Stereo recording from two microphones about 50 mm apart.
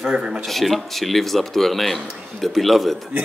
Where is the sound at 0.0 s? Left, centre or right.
Centre.